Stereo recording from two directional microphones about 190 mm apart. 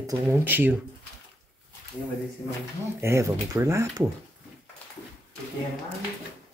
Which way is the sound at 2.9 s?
15° right (ahead or behind).